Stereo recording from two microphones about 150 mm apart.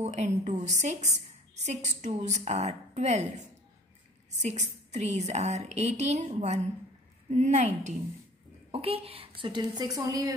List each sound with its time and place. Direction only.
0.0 s a woman's voice: 50° right (ahead or behind)
4.4 s a woman's voice: 50° right (ahead or behind); by 10.3 s 20° right (ahead or behind)